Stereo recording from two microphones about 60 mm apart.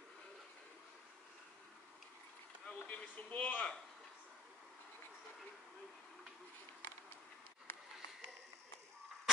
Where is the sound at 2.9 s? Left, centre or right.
Left.